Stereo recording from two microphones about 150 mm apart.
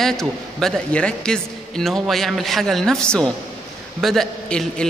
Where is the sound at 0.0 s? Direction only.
5° left (ahead or behind).